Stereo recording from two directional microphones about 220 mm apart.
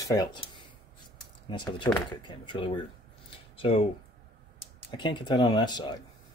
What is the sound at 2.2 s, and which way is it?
Speech, 20° left (ahead or behind).